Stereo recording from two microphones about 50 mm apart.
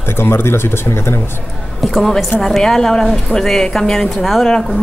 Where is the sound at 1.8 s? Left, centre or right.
Centre.